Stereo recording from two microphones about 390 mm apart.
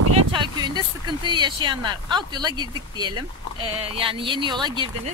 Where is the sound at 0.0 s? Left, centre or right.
Right.